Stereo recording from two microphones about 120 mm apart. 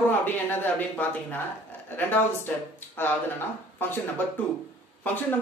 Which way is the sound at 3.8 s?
20° left (ahead or behind).